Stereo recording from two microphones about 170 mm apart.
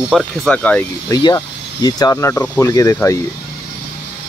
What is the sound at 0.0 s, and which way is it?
Speech, centre (ahead or behind).